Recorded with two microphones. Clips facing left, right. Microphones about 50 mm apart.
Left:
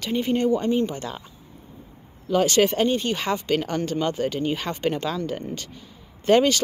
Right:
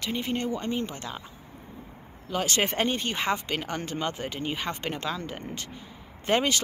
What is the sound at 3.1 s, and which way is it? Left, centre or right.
Speech, centre.